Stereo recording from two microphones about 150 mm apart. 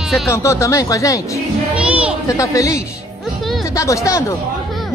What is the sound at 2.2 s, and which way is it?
Speech, 20° left (ahead or behind).